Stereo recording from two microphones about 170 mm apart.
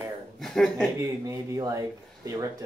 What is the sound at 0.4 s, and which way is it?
Speech, 5° left (ahead or behind).